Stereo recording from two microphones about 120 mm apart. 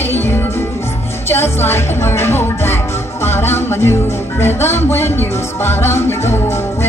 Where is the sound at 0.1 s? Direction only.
20° left (ahead or behind).